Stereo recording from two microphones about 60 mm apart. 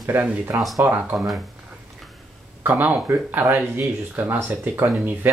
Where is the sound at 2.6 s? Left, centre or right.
Right.